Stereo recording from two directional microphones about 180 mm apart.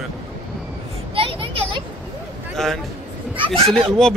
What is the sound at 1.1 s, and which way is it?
Vehicle, 30° right (ahead or behind).